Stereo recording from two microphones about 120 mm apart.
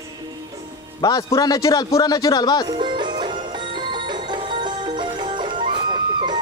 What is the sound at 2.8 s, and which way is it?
Music, 40° right (ahead or behind).